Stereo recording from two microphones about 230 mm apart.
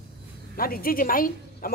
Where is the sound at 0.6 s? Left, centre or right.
Left.